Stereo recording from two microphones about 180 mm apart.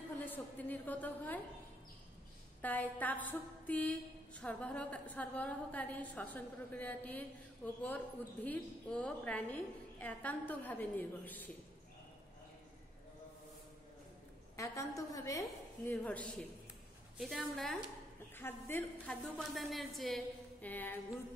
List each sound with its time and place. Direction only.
0.2 s a woman's voice: 10° left (ahead or behind)
2.6 s a woman's voice: 10° left (ahead or behind)
14.6 s a woman's voice: 15° left (ahead or behind)
15.9 s a woman's voice: 10° left (ahead or behind)
18.3 s a woman's voice: 10° left (ahead or behind)